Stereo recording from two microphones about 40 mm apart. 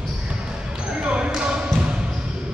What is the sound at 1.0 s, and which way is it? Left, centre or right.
Basketball bounce, right.